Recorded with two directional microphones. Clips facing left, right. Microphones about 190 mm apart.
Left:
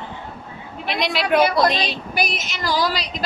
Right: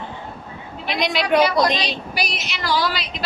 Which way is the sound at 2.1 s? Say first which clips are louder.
Left 2 dB; 50° left (ahead or behind).